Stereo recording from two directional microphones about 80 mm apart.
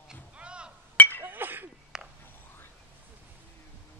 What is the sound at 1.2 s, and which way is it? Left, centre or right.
Chink, right.